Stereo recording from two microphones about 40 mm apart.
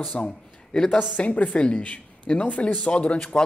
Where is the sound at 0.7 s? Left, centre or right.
Centre.